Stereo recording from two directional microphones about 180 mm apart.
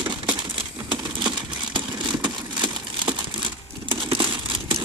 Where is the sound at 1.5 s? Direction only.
25° right (ahead or behind).